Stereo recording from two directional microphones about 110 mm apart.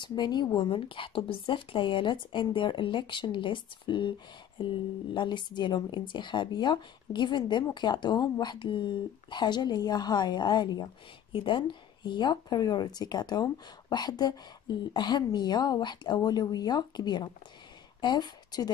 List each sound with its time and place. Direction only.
0.0 s a woman's voice: 40° left (ahead or behind)
5.1 s a woman's voice: 45° left (ahead or behind)